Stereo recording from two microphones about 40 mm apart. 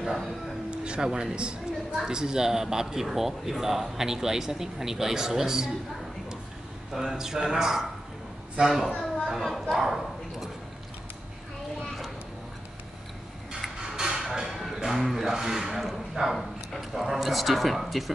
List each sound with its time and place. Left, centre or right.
0.7 s speech: right
6.9 s speech: centre
8.9 s a sound: centre
9.4 s speech: centre
9.8 s speech: centre
13.7 s music: centre
14.4 s music: centre
14.9 s speech: centre
15.8 s dog: centre
16.9 s speech: centre